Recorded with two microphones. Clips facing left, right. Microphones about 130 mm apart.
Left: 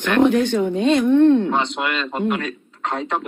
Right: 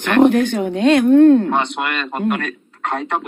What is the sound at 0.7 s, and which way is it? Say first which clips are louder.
Speech: right 7 dB; 75° right (ahead or behind).